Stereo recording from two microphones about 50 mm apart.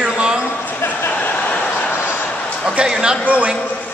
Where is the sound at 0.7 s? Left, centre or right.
Left.